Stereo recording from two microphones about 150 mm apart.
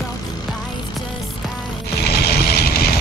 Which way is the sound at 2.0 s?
90° left.